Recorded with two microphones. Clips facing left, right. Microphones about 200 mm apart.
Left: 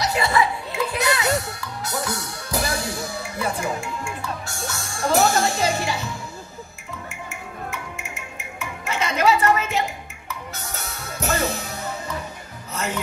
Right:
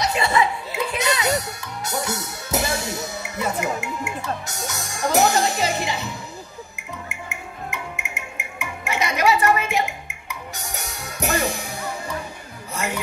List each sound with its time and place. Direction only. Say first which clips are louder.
0.0 s music: even; 20° right (ahead or behind)
7.2 s music: left 2 dB; 15° right (ahead or behind)